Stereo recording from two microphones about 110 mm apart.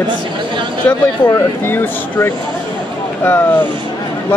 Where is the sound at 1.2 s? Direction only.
15° left (ahead or behind).